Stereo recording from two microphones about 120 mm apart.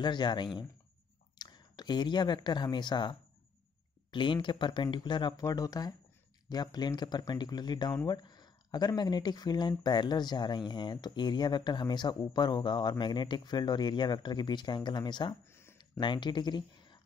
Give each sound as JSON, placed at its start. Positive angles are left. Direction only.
{"t": 0.0, "sound": "speech", "side_deg": 40}
{"t": 15.5, "sound": "a sound", "side_deg": 20}
{"t": 16.0, "sound": "speech", "side_deg": 40}